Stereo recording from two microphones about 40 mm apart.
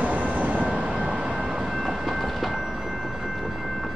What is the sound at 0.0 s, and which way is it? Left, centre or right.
Train, right.